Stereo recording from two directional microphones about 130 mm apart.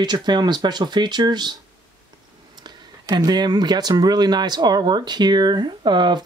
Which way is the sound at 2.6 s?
30° right (ahead or behind).